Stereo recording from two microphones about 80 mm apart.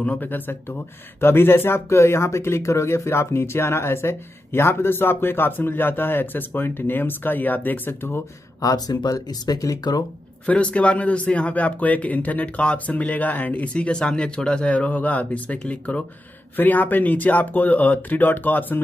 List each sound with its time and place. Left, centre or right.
0.0 s speech: left
8.5 s speech: left
10.4 s a man's voice: centre